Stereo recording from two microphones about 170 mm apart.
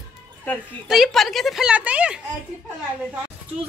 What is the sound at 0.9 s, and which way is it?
A woman's voice, centre (ahead or behind).